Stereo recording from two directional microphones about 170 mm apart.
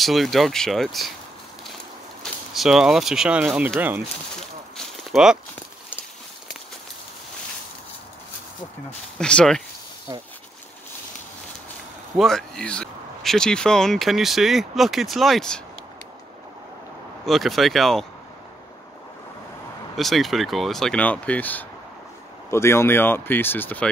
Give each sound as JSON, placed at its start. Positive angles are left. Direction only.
{"t": 0.0, "sound": "speech", "side_deg": 0}
{"t": 2.5, "sound": "speech", "side_deg": 0}
{"t": 4.4, "sound": "a sound", "side_deg": 0}
{"t": 9.2, "sound": "speech", "side_deg": 5}
{"t": 12.2, "sound": "speech", "side_deg": 0}
{"t": 17.2, "sound": "speech", "side_deg": 0}
{"t": 20.0, "sound": "speech", "side_deg": 0}